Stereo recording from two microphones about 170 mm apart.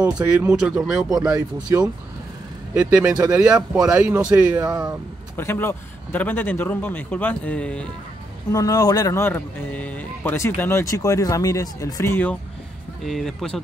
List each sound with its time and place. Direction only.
0.0 s speech: 10° right (ahead or behind)
2.7 s speech: 5° right (ahead or behind)
4.6 s speech: 20° right (ahead or behind)
5.3 s speech: 15° left (ahead or behind)
8.5 s speech: 20° left (ahead or behind)
13.0 s speech: centre (ahead or behind)